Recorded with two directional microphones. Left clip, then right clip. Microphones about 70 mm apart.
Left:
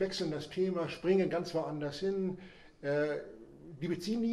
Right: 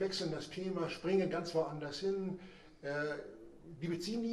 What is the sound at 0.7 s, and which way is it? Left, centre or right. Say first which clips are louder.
Speech: left 2 dB; left.